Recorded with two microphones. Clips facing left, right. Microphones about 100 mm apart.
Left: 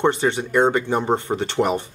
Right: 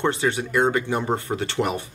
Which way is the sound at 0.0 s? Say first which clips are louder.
Left 3 dB; 30° left (ahead or behind).